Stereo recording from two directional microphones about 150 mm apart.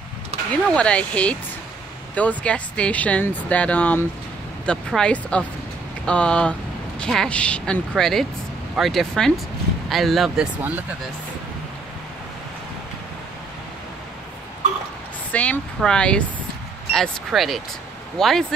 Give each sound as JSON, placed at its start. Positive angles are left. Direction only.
{"t": 0.7, "sound": "speech", "side_deg": 5}
{"t": 15.3, "sound": "speech", "side_deg": 10}